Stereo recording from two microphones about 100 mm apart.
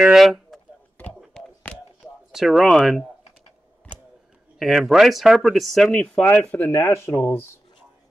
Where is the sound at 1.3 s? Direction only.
10° left (ahead or behind).